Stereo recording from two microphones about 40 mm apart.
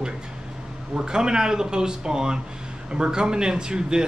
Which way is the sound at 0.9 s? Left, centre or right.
Centre.